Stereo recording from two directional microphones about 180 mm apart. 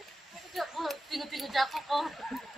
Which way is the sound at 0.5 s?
Centre (ahead or behind).